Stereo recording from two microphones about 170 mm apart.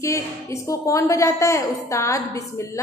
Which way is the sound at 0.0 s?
15° left (ahead or behind).